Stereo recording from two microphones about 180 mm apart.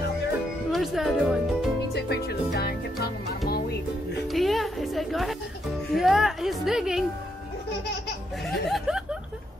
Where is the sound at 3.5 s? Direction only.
60° left (ahead or behind).